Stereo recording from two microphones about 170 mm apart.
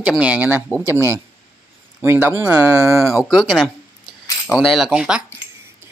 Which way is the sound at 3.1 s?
5° right (ahead or behind).